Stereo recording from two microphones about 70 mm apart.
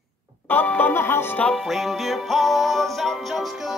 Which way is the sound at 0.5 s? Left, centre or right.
Left.